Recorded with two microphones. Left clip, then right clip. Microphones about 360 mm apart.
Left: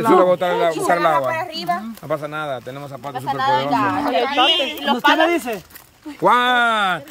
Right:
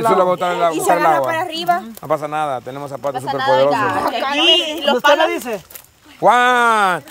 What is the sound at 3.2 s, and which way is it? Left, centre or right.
Speech, right.